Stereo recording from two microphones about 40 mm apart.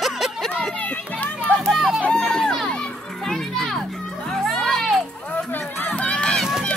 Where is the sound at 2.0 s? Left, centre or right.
Centre.